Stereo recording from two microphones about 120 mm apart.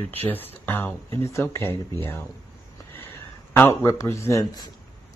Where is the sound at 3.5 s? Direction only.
20° left (ahead or behind).